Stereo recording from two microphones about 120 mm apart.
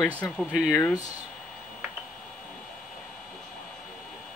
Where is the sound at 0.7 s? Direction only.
25° left (ahead or behind).